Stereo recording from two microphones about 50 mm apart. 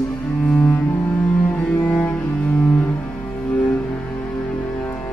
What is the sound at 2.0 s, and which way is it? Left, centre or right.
Cello, left.